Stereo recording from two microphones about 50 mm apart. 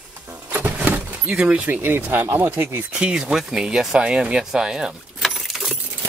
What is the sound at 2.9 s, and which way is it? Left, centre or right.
Speech, right.